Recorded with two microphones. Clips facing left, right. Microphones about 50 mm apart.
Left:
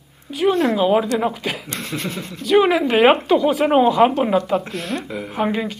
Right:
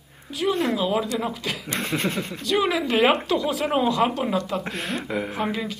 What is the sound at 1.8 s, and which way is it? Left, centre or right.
Speech, centre.